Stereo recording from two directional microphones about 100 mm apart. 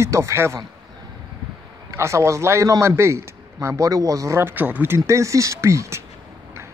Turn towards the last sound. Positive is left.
turn(degrees=-30)  # may be behind; listen again after turning